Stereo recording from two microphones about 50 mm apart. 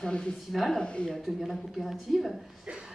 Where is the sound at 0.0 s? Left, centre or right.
Centre.